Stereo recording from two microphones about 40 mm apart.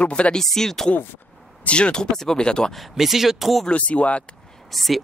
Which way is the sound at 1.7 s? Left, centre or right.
Left.